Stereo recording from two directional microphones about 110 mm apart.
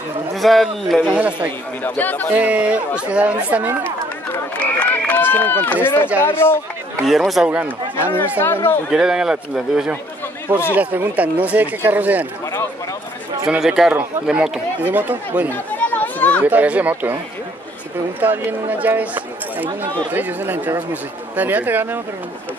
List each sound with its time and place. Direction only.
0.4 s a man's voice: centre (ahead or behind)
1.1 s speech: 15° right (ahead or behind)
1.8 s speech: 15° left (ahead or behind)
2.3 s speech: 10° right (ahead or behind)
4.3 s speech: 15° left (ahead or behind)
7.1 s a man's voice: centre (ahead or behind)
7.6 s speech: 20° left (ahead or behind)
8.9 s a man's voice: 5° right (ahead or behind)
13.5 s a man's voice: 5° right (ahead or behind)
15.9 s children playing: 15° left (ahead or behind)
16.4 s speech: 15° right (ahead or behind)
18.2 s speech: 15° right (ahead or behind)